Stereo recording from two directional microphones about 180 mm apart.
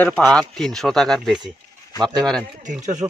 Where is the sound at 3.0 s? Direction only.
20° right (ahead or behind).